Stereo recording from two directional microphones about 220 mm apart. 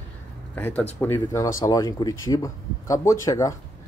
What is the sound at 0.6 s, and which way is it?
Speech, 5° left (ahead or behind).